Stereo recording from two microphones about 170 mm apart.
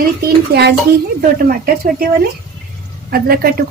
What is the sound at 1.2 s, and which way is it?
A woman's voice, 60° right (ahead or behind).